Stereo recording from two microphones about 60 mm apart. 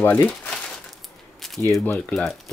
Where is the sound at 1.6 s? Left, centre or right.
Left.